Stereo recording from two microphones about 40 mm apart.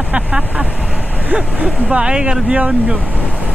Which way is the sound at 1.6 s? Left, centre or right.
Right.